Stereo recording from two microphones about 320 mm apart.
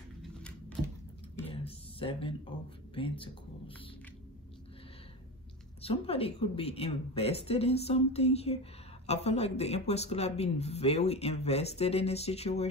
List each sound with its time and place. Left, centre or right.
0.2 s a sound: centre
2.9 s speech: centre
5.8 s speech: centre